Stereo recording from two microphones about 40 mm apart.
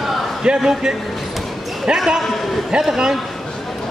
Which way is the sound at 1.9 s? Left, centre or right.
Right.